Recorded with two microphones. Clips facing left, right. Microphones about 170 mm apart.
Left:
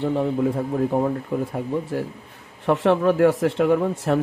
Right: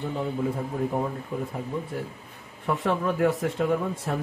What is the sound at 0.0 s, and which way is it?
Speech, 70° left (ahead or behind).